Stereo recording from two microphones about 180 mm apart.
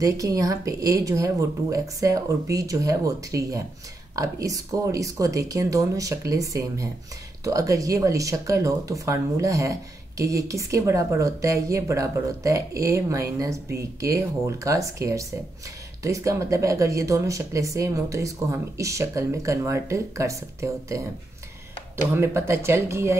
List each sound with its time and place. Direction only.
0.0 s speech: 20° right (ahead or behind)
22.1 s speech: 15° right (ahead or behind)